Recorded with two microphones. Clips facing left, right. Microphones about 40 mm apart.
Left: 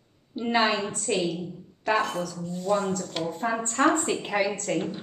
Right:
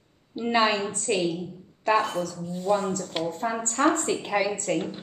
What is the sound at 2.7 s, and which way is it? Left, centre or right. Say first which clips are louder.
A woman's voice: even; centre.